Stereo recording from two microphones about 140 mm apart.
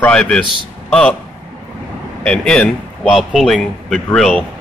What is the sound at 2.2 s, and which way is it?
A man's voice, 5° left (ahead or behind).